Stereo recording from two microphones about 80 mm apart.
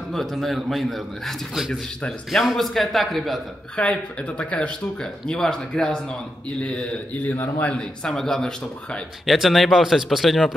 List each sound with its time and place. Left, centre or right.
0.1 s speech: centre
3.7 s speech: centre
7.3 s a man's voice: left
7.7 s speech: centre